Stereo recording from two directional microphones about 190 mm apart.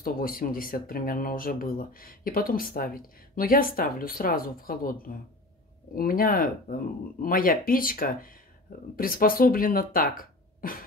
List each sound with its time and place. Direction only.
0.0 s speech: 50° left (ahead or behind)